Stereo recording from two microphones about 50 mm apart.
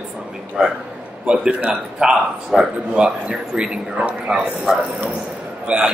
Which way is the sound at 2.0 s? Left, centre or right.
Centre.